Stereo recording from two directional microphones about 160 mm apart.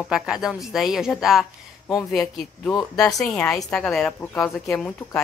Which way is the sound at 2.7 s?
25° left (ahead or behind).